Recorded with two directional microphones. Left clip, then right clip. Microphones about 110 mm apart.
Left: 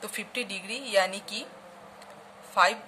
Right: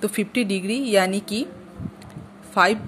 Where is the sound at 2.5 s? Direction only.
45° right (ahead or behind).